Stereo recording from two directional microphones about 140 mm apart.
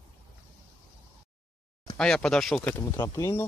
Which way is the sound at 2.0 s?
5° left (ahead or behind).